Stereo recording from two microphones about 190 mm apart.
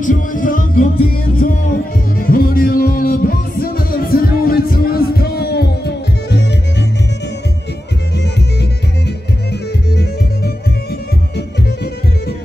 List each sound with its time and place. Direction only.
0.0 s music: 45° left (ahead or behind); by 6.4 s 60° left (ahead or behind)